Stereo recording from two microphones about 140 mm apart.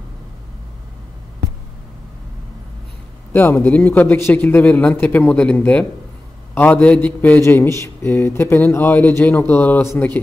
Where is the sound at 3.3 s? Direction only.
15° left (ahead or behind).